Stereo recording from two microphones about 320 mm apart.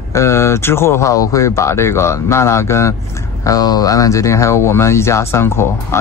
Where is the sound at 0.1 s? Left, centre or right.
Centre.